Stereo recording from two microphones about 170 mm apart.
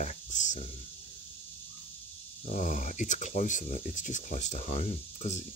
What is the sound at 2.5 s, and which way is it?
Speech, 45° left (ahead or behind).